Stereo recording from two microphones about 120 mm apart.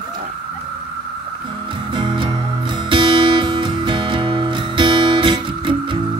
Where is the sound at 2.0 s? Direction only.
40° right (ahead or behind).